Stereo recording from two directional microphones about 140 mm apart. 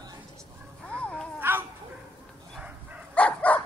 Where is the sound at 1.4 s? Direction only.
15° right (ahead or behind).